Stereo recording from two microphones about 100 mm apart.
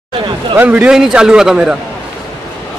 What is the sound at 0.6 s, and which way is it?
A man's voice, 10° right (ahead or behind).